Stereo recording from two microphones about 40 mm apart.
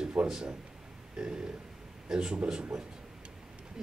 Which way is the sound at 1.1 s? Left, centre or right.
Right.